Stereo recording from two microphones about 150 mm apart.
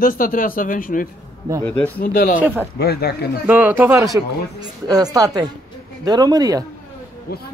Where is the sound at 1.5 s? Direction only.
25° right (ahead or behind).